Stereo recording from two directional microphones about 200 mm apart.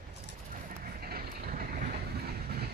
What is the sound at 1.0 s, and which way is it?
Vehicle, 50° right (ahead or behind).